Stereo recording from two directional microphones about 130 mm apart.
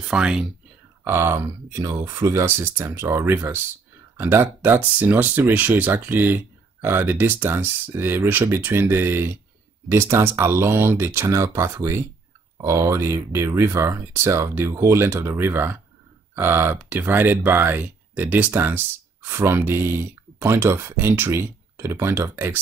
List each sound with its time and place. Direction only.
0.1 s speech: 5° right (ahead or behind)
1.0 s speech: 20° right (ahead or behind)